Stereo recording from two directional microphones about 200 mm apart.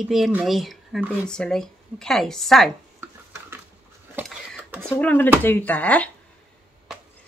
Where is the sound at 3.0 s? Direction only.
10° right (ahead or behind).